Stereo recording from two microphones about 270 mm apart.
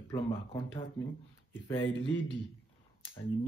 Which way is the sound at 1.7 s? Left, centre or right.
Left.